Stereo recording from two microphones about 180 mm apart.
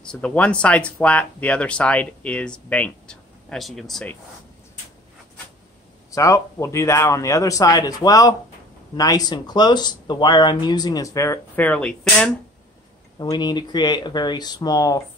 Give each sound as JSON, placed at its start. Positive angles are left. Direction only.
{"t": 0.0, "sound": "speech", "side_deg": 5}
{"t": 6.1, "sound": "speech", "side_deg": 15}
{"t": 13.2, "sound": "speech", "side_deg": 25}